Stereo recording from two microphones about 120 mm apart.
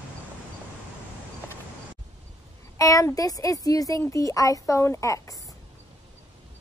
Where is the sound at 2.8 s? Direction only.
30° left (ahead or behind).